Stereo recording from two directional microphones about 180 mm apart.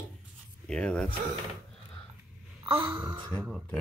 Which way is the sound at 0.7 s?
5° left (ahead or behind).